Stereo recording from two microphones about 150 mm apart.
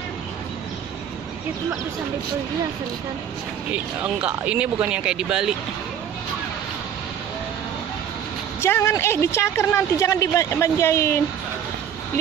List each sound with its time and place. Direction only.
3.7 s speech: 10° right (ahead or behind)
8.5 s a woman's voice: 15° left (ahead or behind)